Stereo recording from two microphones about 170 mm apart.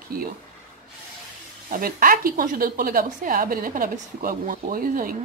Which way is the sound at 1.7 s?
55° right (ahead or behind).